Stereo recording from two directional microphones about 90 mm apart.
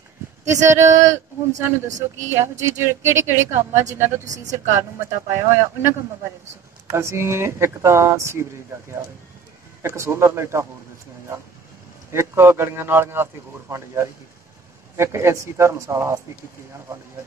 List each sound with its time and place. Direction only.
0.5 s a woman's voice: 35° right (ahead or behind)
2.2 s a woman's voice: 30° right (ahead or behind)
9.8 s a woman's voice: 30° right (ahead or behind)
12.1 s a man's voice: 30° right (ahead or behind)